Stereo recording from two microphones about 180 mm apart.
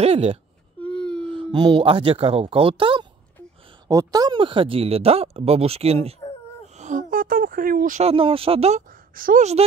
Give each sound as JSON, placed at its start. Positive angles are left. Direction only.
{"t": 0.0, "sound": "speech", "side_deg": -30}
{"t": 0.7, "sound": "wail", "side_deg": 5}
{"t": 1.3, "sound": "speech", "side_deg": -25}
{"t": 8.0, "sound": "speech", "side_deg": -30}
{"t": 9.1, "sound": "a woman's voice", "side_deg": -50}